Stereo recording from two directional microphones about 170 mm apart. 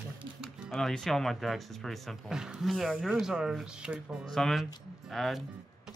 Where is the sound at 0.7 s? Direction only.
5° left (ahead or behind).